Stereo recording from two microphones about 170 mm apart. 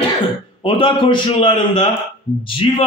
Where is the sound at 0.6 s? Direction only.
30° left (ahead or behind).